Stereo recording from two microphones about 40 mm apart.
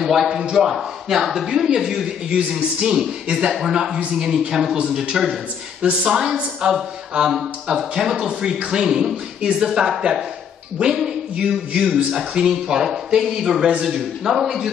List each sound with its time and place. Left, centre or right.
0.0 s speech: centre
3.3 s speech: right
4.1 s speech: centre
10.8 s speech: right; by 14.6 s centre